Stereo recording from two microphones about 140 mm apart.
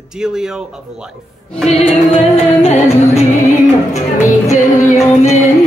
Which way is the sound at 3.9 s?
60° left (ahead or behind).